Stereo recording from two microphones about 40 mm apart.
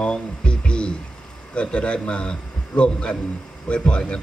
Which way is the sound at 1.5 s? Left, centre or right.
Left.